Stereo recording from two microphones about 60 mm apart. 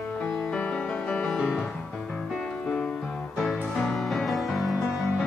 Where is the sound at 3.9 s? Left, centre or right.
Centre.